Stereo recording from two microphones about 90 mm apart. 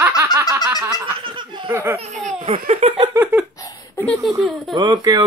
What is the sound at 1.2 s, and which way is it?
Laughter, 70° right (ahead or behind).